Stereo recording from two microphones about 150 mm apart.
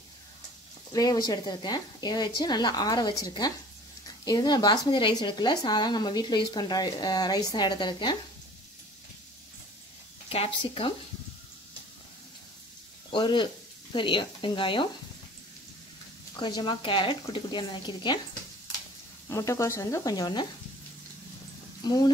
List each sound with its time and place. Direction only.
0.9 s speech: 25° left (ahead or behind)
10.3 s speech: 40° left (ahead or behind)
13.1 s speech: 30° left (ahead or behind)
16.3 s speech: 30° left (ahead or behind)
19.2 s speech: 20° left (ahead or behind)
21.8 s speech: 30° left (ahead or behind)